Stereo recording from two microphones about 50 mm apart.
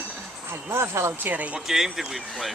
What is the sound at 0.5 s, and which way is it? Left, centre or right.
Speech, right.